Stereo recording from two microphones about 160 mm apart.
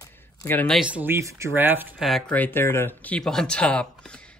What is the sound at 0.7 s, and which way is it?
Speech, 10° right (ahead or behind).